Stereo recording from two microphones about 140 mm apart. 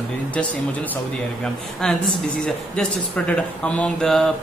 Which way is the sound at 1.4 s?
5° left (ahead or behind).